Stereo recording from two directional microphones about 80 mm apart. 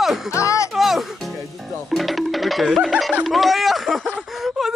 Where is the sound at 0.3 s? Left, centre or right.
Left.